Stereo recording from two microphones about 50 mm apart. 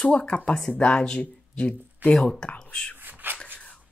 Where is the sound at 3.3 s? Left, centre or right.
Left.